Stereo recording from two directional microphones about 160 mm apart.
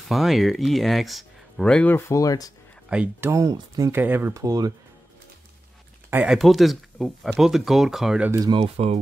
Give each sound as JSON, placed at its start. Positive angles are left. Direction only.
{"t": 0.1, "sound": "speech", "side_deg": 0}
{"t": 2.9, "sound": "speech", "side_deg": -10}
{"t": 6.0, "sound": "a sound", "side_deg": -10}
{"t": 6.3, "sound": "speech", "side_deg": 0}
{"t": 8.3, "sound": "speech", "side_deg": -20}
{"t": 8.5, "sound": "speech", "side_deg": -40}